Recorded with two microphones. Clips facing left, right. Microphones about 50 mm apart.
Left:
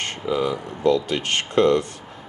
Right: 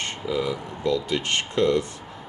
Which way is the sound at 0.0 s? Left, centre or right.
Left.